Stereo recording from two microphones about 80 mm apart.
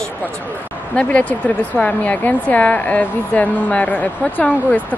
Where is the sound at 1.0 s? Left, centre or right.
Centre.